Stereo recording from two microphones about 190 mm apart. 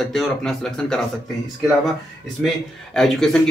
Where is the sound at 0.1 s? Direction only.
Centre (ahead or behind).